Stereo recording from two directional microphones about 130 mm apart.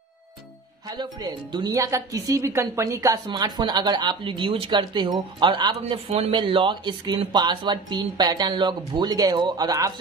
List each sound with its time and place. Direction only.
0.8 s speech: 30° right (ahead or behind)
6.0 s speech: 60° right (ahead or behind)
6.3 s speech: 40° right (ahead or behind)